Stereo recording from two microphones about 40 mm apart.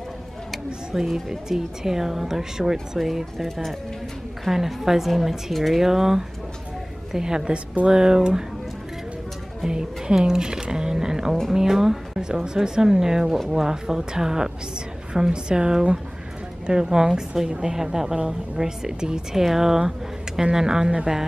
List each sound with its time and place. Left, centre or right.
0.9 s speech: centre
4.5 s speech: centre
9.7 s speech: centre